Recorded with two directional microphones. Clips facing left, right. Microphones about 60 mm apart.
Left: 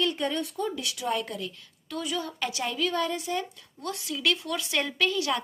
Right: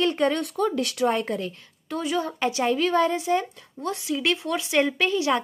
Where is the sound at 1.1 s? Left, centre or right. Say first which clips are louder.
Right 4 dB; right.